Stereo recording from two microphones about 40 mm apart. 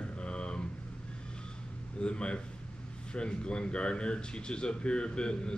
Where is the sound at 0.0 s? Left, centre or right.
Left.